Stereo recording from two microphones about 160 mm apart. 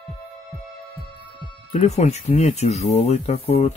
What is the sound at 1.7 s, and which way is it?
Speech, 45° left (ahead or behind).